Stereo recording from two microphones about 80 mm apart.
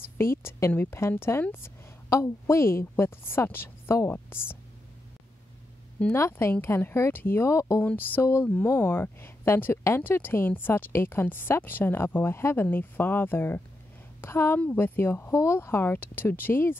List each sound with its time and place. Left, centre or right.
0.2 s a woman's voice: left
6.1 s a woman's voice: left
7.8 s a woman's voice: left